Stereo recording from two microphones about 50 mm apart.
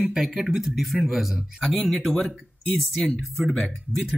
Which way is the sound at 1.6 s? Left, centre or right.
Centre.